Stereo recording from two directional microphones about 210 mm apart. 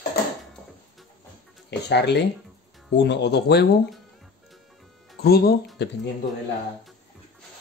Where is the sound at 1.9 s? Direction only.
55° left (ahead or behind).